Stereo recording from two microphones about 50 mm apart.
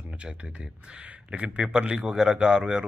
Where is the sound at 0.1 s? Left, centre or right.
Right.